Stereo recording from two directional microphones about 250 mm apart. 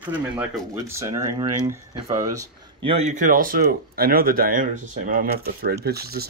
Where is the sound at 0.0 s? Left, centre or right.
Centre.